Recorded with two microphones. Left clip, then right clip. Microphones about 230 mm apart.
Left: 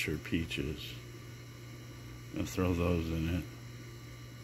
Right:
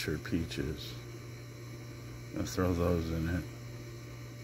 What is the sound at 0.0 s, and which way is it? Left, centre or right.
Speech, centre.